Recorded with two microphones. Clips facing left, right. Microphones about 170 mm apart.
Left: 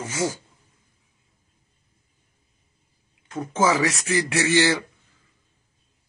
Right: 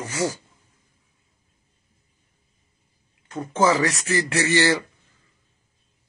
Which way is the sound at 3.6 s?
15° left (ahead or behind).